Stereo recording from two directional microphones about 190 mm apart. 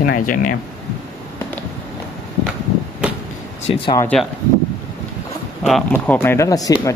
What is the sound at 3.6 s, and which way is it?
Speech, 30° left (ahead or behind).